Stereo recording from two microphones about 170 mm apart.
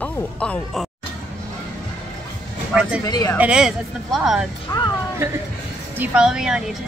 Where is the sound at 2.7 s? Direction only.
5° right (ahead or behind).